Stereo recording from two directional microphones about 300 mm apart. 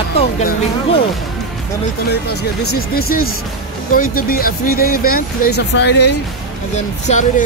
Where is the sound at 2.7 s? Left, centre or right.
Left.